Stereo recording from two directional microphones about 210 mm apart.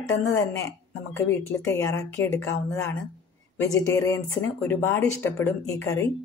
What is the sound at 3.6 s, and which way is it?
Speech, 15° left (ahead or behind).